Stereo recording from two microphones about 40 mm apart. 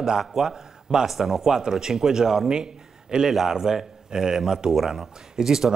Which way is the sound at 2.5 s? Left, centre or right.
Centre.